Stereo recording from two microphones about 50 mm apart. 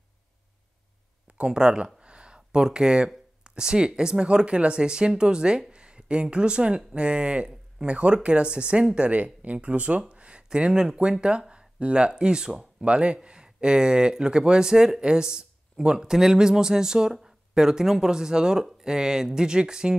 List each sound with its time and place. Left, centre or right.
1.2 s speech: centre
2.0 s a sound: centre
3.4 s speech: centre